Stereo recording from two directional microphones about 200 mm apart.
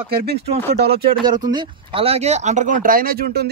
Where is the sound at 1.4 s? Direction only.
20° right (ahead or behind).